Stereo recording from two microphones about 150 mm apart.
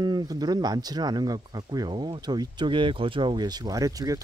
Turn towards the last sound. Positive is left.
turn(degrees=-25)  # may be behind; listen again after turning